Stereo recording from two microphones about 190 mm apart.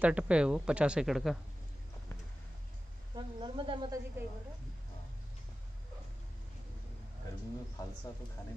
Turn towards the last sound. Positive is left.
turn(degrees=20)  # may be behind; listen again after turning